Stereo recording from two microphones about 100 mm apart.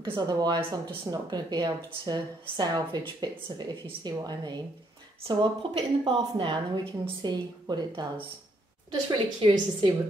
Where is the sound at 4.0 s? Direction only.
45° right (ahead or behind).